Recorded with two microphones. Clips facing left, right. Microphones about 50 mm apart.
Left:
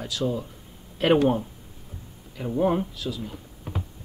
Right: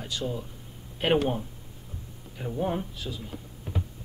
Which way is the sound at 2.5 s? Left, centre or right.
Left.